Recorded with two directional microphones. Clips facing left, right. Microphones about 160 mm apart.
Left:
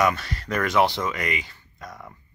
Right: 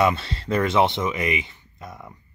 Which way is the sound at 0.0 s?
25° right (ahead or behind).